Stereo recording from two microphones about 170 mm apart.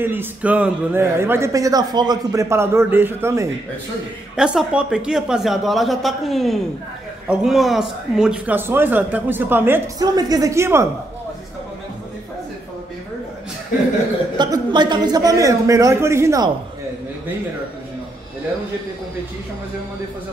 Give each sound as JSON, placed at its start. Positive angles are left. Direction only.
{"t": 0.0, "sound": "a man's voice", "side_deg": -10}
{"t": 14.4, "sound": "a woman's voice", "side_deg": -25}